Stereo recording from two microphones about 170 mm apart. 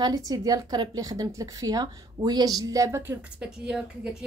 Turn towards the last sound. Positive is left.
turn(degrees=-5)  # may be behind; listen again after turning